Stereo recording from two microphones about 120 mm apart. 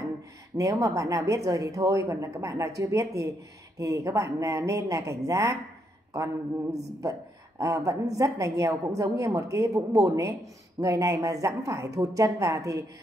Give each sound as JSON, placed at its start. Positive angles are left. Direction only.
{"t": 0.6, "sound": "a woman's voice", "side_deg": -25}
{"t": 7.0, "sound": "a woman's voice", "side_deg": -25}